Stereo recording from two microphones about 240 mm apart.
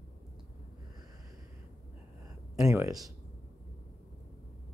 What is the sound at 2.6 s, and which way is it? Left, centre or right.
Speech, centre.